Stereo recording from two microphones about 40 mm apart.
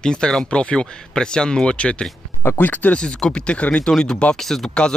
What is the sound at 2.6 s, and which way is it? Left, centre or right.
Speech, left.